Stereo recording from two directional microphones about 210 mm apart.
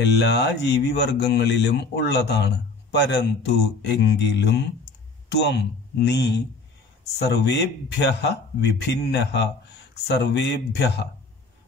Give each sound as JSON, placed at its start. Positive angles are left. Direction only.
{"t": 0.0, "sound": "speech", "side_deg": 55}